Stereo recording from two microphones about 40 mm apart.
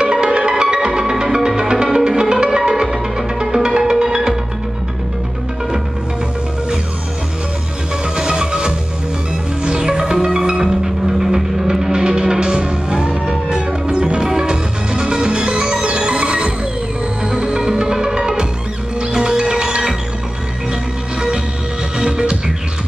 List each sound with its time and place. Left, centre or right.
0.0 s music: centre
8.2 s music: centre
11.9 s music: centre
21.9 s music: centre